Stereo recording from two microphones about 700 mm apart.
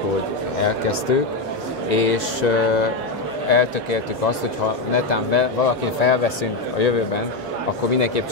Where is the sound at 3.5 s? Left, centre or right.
Left.